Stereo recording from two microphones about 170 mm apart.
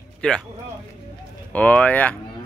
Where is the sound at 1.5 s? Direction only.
10° left (ahead or behind).